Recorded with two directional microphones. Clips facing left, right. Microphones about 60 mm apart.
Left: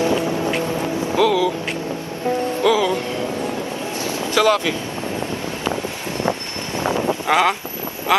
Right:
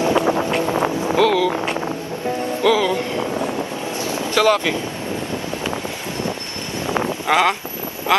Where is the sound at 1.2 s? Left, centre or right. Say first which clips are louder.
Even; centre.